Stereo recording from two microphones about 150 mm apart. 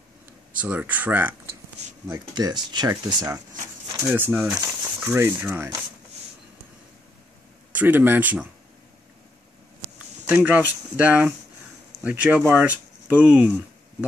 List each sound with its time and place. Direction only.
0.6 s speech: 10° right (ahead or behind)
2.0 s speech: 25° right (ahead or behind)
3.9 s speech: 15° right (ahead or behind)
7.7 s speech: 10° right (ahead or behind)
10.2 s speech: 10° right (ahead or behind)